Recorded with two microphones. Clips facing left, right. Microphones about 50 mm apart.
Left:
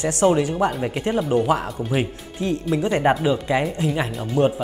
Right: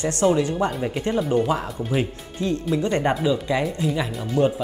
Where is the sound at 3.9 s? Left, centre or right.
Left.